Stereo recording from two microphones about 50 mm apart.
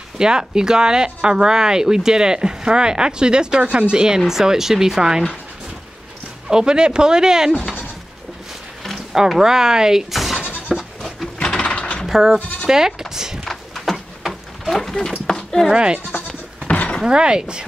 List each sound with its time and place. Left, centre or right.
0.2 s speech: centre
6.5 s speech: centre
9.1 s speech: centre
10.1 s goat: centre
11.4 s mechanisms: centre
12.1 s speech: centre
13.1 s a sound: centre
13.5 s a sound: centre
15.7 s speech: centre
16.6 s a sound: left
17.0 s speech: centre